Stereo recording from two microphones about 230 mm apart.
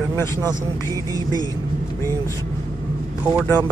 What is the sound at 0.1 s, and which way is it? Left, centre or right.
Speech, centre.